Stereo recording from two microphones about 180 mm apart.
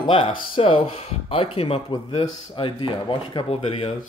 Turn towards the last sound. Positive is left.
turn(degrees=30)  # may be behind; listen again after turning